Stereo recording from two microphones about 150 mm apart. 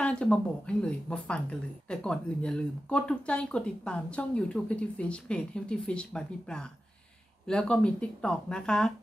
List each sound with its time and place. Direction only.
0.0 s a woman's voice: 5° left (ahead or behind)